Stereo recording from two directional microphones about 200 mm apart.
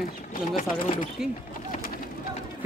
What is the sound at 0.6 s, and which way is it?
Speech, 40° left (ahead or behind).